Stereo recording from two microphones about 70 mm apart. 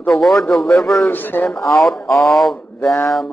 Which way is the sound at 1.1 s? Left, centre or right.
Left.